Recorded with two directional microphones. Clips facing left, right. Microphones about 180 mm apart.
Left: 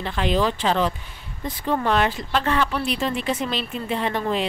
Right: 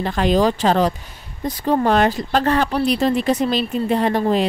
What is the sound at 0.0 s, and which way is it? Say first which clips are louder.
Speech: right 5 dB; 40° right (ahead or behind).